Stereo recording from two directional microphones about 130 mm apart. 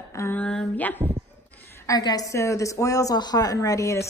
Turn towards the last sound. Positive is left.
turn(degrees=25)  # may be behind; listen again after turning